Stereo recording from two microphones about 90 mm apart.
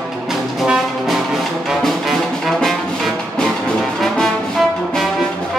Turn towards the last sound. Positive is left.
turn(degrees=0)  # may be behind; listen again after turning